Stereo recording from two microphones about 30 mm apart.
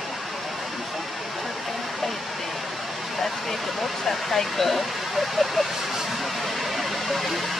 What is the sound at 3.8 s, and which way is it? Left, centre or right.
Speech, centre.